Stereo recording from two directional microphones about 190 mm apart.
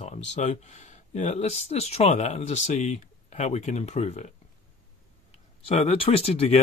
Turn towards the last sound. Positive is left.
turn(degrees=30)  # may be behind; listen again after turning